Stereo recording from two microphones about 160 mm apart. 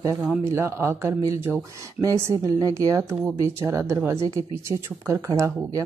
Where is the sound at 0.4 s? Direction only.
15° right (ahead or behind).